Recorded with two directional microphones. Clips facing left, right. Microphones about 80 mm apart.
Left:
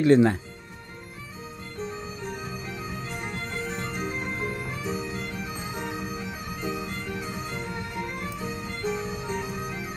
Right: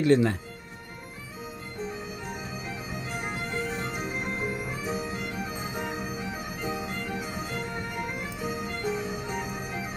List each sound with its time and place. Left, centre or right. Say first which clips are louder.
0.0 s speech: left 4 dB; left
3.1 s music: right 1 dB; centre